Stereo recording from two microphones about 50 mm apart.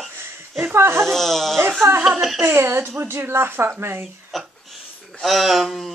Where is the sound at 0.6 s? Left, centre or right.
Right.